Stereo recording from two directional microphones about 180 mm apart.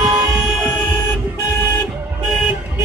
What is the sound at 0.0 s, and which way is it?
Vehicle, 20° right (ahead or behind).